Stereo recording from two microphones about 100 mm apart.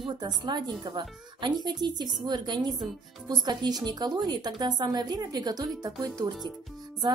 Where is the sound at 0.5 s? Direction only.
50° right (ahead or behind).